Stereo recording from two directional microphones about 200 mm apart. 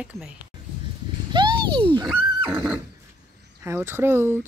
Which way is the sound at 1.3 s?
25° right (ahead or behind).